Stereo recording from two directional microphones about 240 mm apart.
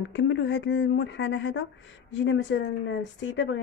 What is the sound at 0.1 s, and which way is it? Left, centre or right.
Speech, left.